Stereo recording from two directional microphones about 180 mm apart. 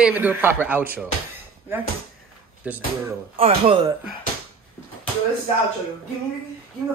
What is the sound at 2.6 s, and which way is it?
Speech, 10° right (ahead or behind).